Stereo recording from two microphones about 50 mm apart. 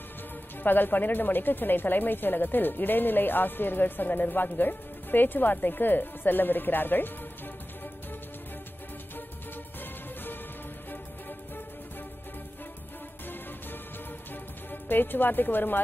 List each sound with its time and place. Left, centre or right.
0.7 s speech: left
14.7 s speech: left